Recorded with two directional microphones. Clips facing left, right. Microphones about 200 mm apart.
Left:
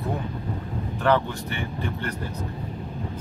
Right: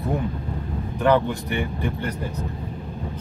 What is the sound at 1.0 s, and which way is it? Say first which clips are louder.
Speech: right 3 dB; 15° right (ahead or behind).